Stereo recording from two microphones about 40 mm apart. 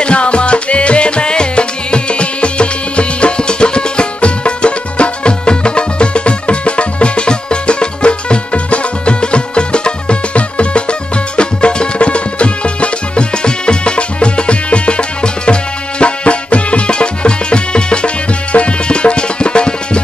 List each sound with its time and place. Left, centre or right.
0.0 s music: left